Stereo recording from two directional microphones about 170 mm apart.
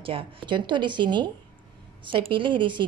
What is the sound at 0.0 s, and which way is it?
Speech, 30° right (ahead or behind).